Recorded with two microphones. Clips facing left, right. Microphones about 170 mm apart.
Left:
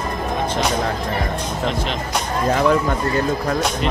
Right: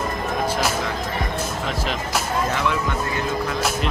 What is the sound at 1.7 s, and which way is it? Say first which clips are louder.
Music: left 2 dB; 5° right (ahead or behind).